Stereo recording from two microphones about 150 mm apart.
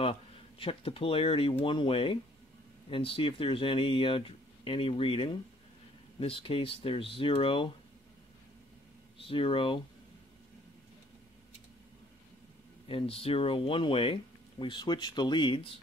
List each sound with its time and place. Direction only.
0.0 s speech: 40° left (ahead or behind)
9.2 s speech: 35° left (ahead or behind)
12.8 s speech: 35° left (ahead or behind)